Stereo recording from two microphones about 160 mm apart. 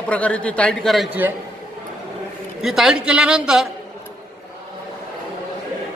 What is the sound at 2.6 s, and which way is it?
A man's voice, 5° right (ahead or behind).